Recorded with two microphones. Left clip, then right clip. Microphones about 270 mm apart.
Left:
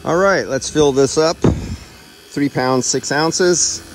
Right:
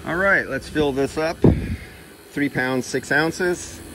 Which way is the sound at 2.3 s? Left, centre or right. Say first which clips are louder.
Left 6 dB; centre.